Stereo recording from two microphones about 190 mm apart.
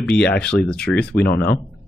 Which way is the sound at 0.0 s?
5° left (ahead or behind).